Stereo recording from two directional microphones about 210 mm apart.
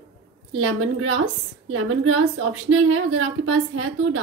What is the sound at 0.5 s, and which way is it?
A woman's voice, 70° right (ahead or behind).